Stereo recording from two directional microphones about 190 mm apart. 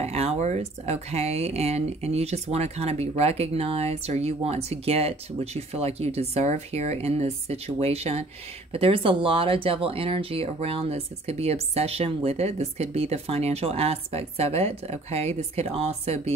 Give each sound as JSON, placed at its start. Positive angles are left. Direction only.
{"t": 0.0, "sound": "speech", "side_deg": -35}